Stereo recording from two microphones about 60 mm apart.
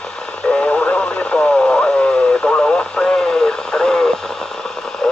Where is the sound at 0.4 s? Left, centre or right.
Centre.